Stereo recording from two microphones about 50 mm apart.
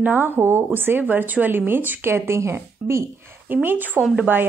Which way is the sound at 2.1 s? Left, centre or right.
Right.